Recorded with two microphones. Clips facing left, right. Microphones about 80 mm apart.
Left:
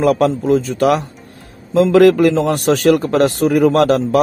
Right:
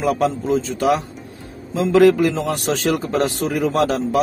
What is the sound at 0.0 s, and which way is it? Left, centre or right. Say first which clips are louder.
A man's voice: left 5 dB; left.